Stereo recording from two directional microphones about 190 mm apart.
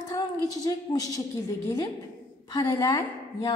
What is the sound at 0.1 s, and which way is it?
A woman's voice, 20° left (ahead or behind).